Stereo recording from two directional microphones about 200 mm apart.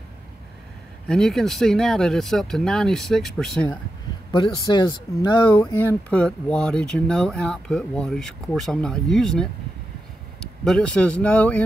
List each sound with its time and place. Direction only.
1.0 s speech: 5° left (ahead or behind)
4.3 s speech: 20° left (ahead or behind); by 9.5 s centre (ahead or behind)
10.6 s speech: 5° left (ahead or behind)